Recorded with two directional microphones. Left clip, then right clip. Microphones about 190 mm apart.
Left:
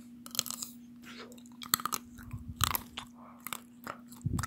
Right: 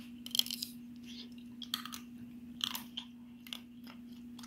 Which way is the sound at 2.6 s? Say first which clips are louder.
Left 5 dB; 45° left (ahead or behind).